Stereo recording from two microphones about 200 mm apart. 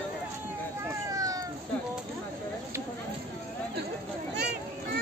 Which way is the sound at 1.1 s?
15° right (ahead or behind).